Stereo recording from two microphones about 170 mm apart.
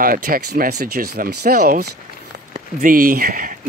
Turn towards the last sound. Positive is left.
turn(degrees=-55)  # may be behind; listen again after turning